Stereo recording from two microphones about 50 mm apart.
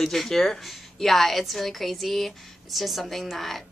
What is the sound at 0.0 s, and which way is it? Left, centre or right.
A woman's voice, centre.